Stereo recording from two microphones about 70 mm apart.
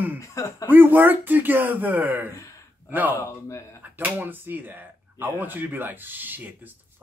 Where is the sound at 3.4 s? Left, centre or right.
Left.